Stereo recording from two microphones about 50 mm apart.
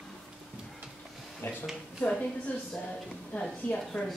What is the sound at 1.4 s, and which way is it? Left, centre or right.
Speech, left.